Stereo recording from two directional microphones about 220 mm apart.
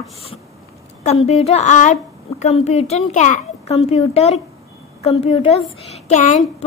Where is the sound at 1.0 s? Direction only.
30° left (ahead or behind).